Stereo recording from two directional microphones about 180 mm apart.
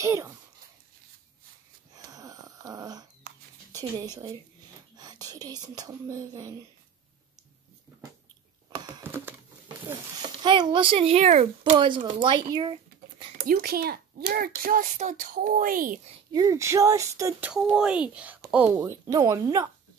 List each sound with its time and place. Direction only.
0.0 s speech: 15° right (ahead or behind)
2.0 s a sound: 20° right (ahead or behind)
3.7 s speech: 20° right (ahead or behind)
10.4 s a child's voice: 25° right (ahead or behind)
11.7 s speech: 25° right (ahead or behind)
13.4 s a child's voice: 55° right (ahead or behind)
16.3 s speech: 20° right (ahead or behind)
17.5 s speech: 5° right (ahead or behind)